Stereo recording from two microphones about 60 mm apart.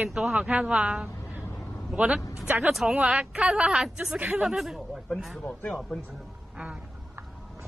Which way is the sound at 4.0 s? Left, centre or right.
Right.